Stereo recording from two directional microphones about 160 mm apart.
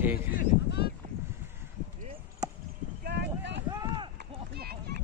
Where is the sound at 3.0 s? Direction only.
90° right.